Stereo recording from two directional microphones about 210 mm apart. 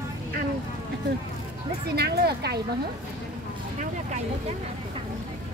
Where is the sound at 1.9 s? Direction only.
50° right (ahead or behind).